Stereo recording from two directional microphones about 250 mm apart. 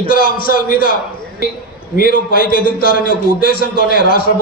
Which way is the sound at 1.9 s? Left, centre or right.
Left.